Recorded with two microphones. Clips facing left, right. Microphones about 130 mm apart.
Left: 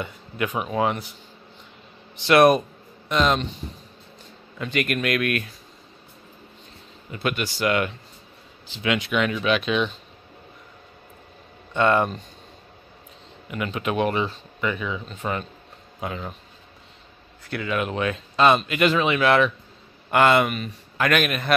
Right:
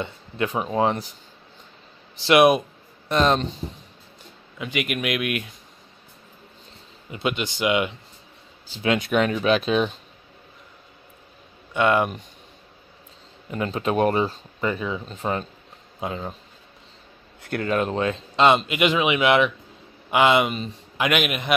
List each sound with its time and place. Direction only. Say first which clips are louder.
0.0 s speech: right 1 dB; 30° right (ahead or behind)
2.2 s speech: even; 10° right (ahead or behind)
3.1 s speech: right 1 dB; 35° right (ahead or behind)
4.6 s speech: left 2 dB; 10° right (ahead or behind)
7.1 s speech: right 1 dB; 20° right (ahead or behind)
8.8 s speech: right 2 dB; 40° right (ahead or behind)
11.7 s speech: even; 10° right (ahead or behind)
13.5 s speech: right 2 dB; 30° right (ahead or behind)
17.4 s speech: right 3 dB; 50° right (ahead or behind)
17.7 s speech: right 1 dB; 30° right (ahead or behind); by 21.5 s 15° right (ahead or behind)